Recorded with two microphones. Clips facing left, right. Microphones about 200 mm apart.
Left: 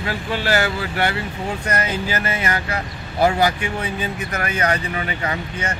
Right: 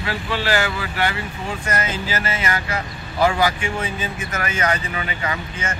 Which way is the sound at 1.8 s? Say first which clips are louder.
Left 2 dB; 60° left (ahead or behind).